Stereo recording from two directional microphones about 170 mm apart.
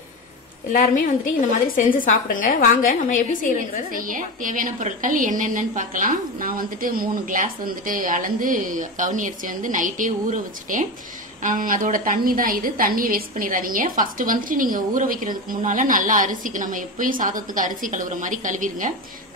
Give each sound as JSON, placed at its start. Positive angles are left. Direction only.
{"t": 0.7, "sound": "a woman's voice", "side_deg": 55}
{"t": 3.9, "sound": "a woman's voice", "side_deg": -50}